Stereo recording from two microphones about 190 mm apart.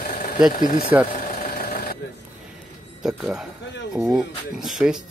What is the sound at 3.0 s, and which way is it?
Speech, 5° right (ahead or behind).